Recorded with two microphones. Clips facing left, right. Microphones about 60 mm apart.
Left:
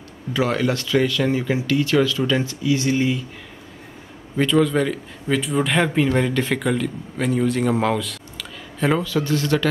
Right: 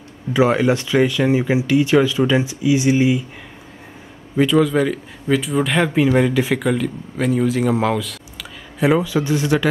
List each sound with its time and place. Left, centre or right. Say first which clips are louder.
0.3 s speech: right 5 dB; centre
4.4 s speech: right 3 dB; centre